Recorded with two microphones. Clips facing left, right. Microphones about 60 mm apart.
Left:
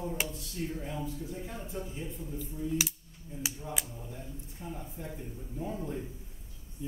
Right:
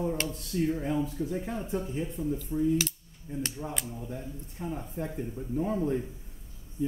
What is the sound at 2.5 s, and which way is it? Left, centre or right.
Speech, right.